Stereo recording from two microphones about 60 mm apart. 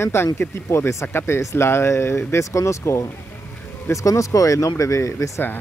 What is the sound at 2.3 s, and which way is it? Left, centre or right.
Speech, left.